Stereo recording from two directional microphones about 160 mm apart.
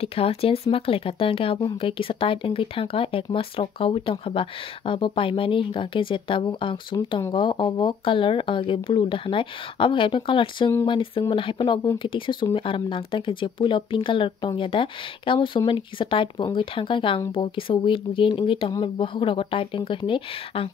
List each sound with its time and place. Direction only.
0.0 s speech: 40° left (ahead or behind)